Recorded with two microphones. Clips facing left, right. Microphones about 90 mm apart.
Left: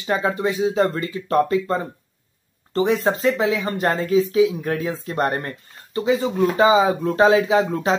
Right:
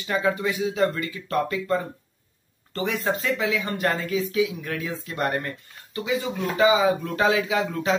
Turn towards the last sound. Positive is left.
turn(degrees=30)  # may be behind; listen again after turning